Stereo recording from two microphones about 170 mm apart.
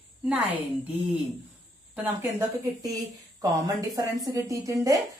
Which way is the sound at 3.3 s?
20° right (ahead or behind).